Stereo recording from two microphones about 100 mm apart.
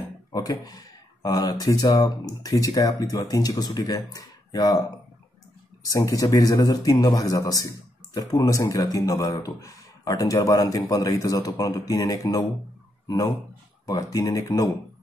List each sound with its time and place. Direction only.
0.3 s speech: 40° left (ahead or behind)
13.8 s speech: 40° left (ahead or behind)